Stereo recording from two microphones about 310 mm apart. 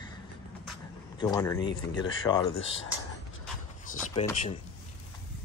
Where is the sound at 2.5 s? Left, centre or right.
Left.